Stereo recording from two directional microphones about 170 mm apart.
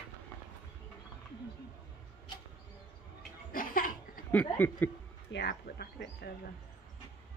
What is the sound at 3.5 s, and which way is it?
Laughter, 55° left (ahead or behind).